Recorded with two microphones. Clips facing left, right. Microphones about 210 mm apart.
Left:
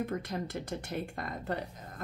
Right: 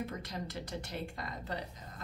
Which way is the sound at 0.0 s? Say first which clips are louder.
Left 5 dB; 50° left (ahead or behind).